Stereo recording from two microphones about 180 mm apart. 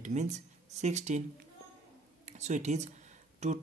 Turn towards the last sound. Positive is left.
turn(degrees=-40)  # may be behind; listen again after turning